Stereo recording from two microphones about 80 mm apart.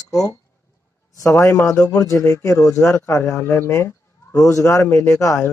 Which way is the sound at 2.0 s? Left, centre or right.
Left.